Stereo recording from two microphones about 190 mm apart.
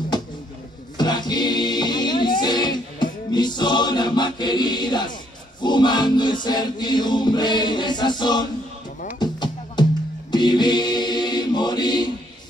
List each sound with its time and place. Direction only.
0.9 s choir: 20° left (ahead or behind)
5.6 s music: 25° left (ahead or behind)
10.3 s mantra: 25° left (ahead or behind)